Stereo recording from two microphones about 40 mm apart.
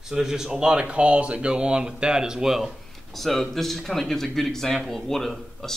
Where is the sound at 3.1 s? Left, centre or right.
Centre.